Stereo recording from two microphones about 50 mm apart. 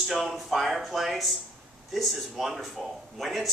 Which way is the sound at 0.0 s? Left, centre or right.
Centre.